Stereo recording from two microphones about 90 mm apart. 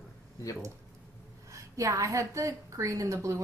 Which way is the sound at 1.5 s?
35° right (ahead or behind).